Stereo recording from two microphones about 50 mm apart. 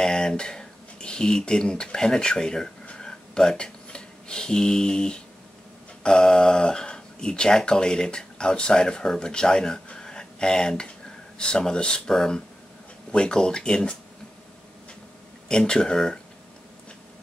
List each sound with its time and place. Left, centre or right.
0.0 s speech: centre
12.1 s speech: centre
15.4 s speech: centre